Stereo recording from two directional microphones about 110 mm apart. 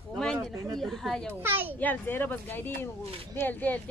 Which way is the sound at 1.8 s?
15° left (ahead or behind).